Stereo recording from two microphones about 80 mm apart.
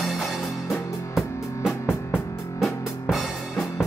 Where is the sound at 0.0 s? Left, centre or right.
Centre.